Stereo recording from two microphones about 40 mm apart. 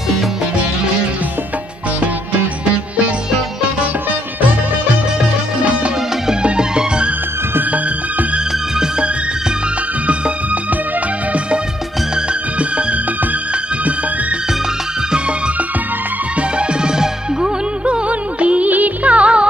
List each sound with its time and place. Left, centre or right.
6.4 s music: right
10.0 s music: right
12.5 s music: right
15.1 s music: right
16.9 s music: centre
17.8 s music: right